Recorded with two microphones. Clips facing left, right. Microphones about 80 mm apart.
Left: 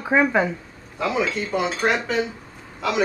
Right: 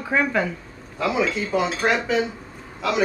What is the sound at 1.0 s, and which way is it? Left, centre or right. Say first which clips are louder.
Speech: right 1 dB; centre.